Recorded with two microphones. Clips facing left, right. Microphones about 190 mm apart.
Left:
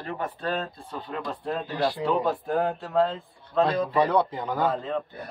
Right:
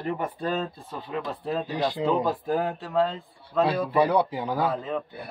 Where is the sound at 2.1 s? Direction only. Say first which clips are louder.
Even; centre (ahead or behind).